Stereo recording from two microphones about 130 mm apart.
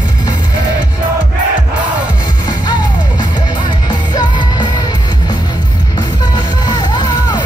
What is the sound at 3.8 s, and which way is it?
Music, 35° left (ahead or behind).